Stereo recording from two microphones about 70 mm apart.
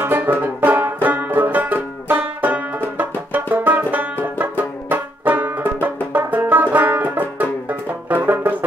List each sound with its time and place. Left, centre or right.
0.0 s banjo: right
6.5 s music: right